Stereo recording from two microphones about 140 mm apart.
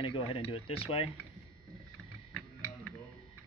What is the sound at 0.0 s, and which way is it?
Speech, 40° left (ahead or behind).